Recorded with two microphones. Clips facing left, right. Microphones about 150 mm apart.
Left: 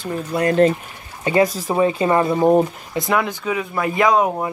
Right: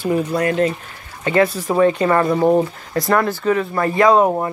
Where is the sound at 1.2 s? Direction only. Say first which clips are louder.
Right 1 dB; 15° left (ahead or behind); by 4.5 s centre (ahead or behind).